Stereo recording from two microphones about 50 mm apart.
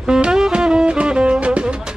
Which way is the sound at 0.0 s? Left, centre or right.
Centre.